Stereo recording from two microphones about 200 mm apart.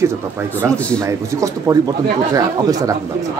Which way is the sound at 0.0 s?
15° right (ahead or behind).